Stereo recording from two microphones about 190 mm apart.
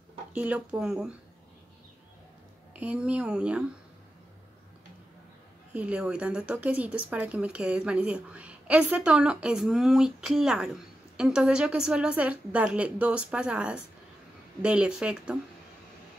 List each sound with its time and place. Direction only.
0.3 s speech: 5° right (ahead or behind)
2.7 s speech: 5° right (ahead or behind)
5.8 s speech: 5° right (ahead or behind)